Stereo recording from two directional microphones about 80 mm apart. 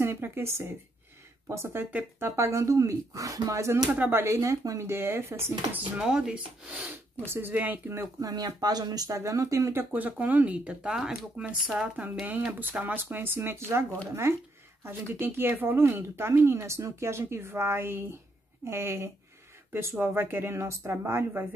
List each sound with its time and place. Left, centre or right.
0.0 s speech: right
1.9 s speech: right
2.2 s speech: right
3.9 s speech: right
5.9 s speech: centre; by 8.1 s right
8.2 s speech: right